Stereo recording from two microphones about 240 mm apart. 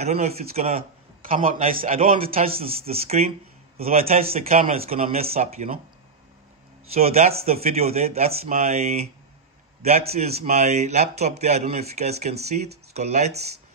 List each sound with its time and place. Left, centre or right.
0.0 s a man's voice: right
6.9 s a man's voice: right